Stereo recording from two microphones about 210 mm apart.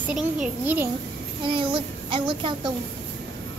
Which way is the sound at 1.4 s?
25° right (ahead or behind).